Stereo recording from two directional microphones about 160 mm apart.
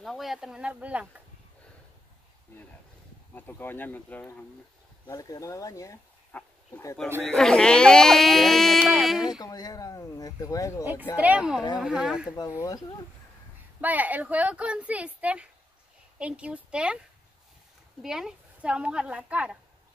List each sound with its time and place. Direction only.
0.0 s speech: centre (ahead or behind)
2.5 s speech: 15° left (ahead or behind)
5.0 s speech: 20° left (ahead or behind)
6.3 s speech: 10° left (ahead or behind)
9.4 s speech: 25° left (ahead or behind)
10.8 s speech: 10° right (ahead or behind)
12.4 s speech: 20° left (ahead or behind)
13.7 s speech: 10° right (ahead or behind)
18.0 s speech: 5° right (ahead or behind)